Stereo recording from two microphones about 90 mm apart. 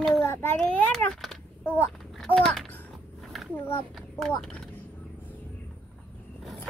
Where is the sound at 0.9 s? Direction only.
5° left (ahead or behind).